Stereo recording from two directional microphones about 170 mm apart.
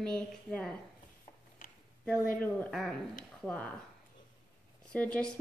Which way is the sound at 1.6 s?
55° left (ahead or behind).